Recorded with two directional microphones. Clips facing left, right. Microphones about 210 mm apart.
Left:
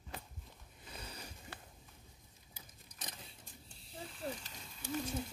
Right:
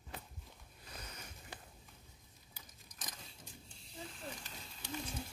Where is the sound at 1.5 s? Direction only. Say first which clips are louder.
Right 1 dB; 15° right (ahead or behind).